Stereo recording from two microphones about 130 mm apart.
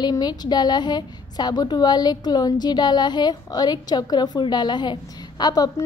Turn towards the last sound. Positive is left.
turn(degrees=30)  # may be behind; listen again after turning